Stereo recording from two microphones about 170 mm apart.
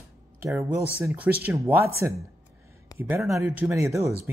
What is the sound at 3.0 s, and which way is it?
Speech, 10° right (ahead or behind).